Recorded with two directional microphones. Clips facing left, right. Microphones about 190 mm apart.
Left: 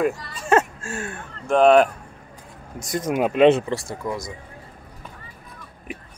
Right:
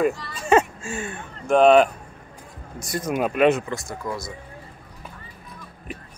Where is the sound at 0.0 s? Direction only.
Centre (ahead or behind).